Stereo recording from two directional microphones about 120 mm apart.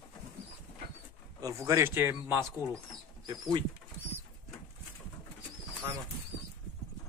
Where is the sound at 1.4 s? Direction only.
30° right (ahead or behind).